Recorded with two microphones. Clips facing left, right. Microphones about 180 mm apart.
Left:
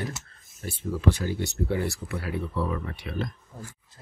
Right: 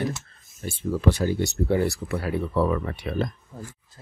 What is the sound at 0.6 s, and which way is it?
Speech, 25° right (ahead or behind).